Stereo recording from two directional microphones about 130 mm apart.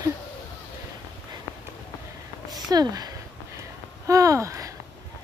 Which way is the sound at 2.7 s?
30° right (ahead or behind).